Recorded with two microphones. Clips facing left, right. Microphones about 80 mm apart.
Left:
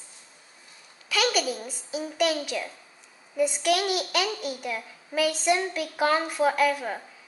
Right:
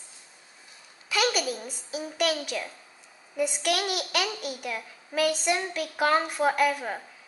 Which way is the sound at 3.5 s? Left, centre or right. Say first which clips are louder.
Left 3 dB; right.